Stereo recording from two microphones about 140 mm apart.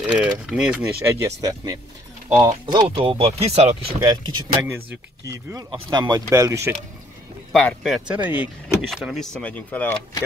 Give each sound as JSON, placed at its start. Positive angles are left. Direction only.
{"t": 0.0, "sound": "speech", "side_deg": -5}
{"t": 1.0, "sound": "speech", "side_deg": -20}
{"t": 4.6, "sound": "speech", "side_deg": -20}
{"t": 7.5, "sound": "speech", "side_deg": 0}
{"t": 8.2, "sound": "speech", "side_deg": -10}
{"t": 8.8, "sound": "speech", "side_deg": 0}